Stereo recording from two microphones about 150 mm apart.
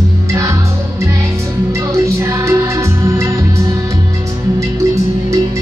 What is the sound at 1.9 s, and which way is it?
Music, 20° right (ahead or behind).